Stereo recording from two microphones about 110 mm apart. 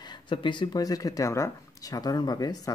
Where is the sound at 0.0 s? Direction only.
45° left (ahead or behind).